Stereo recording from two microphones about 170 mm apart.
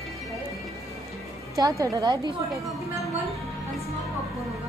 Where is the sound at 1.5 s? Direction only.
20° right (ahead or behind).